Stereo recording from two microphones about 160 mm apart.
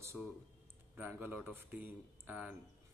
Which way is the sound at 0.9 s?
15° right (ahead or behind).